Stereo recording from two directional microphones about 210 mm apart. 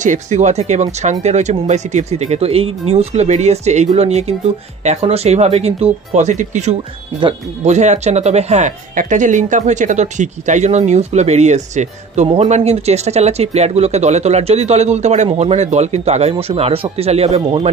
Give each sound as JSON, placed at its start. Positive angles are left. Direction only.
{"t": 0.0, "sound": "speech", "side_deg": -35}